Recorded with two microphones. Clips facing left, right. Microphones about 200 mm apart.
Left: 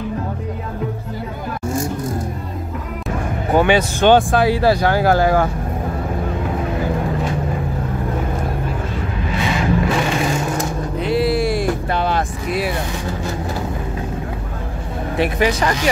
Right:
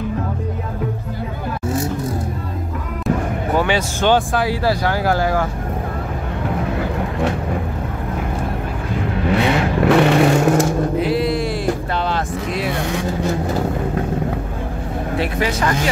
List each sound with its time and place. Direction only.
3.5 s speech: 20° left (ahead or behind)
9.3 s vehicle: 65° right (ahead or behind)
11.0 s vehicle: centre (ahead or behind)
15.1 s speech: 15° left (ahead or behind)